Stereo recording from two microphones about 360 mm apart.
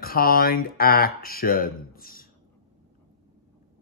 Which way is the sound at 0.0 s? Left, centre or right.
Left.